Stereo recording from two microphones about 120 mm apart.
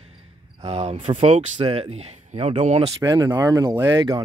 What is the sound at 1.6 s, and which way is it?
Speech, 55° right (ahead or behind).